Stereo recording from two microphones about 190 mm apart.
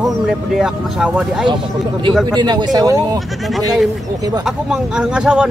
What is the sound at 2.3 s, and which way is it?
Speech, 20° right (ahead or behind).